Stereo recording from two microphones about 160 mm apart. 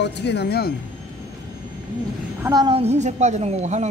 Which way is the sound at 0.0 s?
90° left.